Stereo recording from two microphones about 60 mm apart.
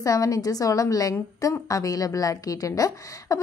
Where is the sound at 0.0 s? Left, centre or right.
Left.